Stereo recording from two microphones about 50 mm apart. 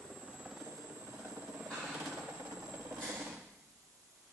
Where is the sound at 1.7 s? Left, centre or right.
Right.